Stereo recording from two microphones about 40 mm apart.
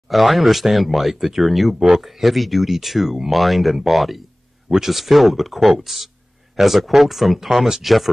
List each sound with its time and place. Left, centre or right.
0.1 s speech: centre